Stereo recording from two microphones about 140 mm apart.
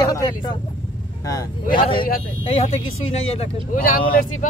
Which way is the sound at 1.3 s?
30° left (ahead or behind).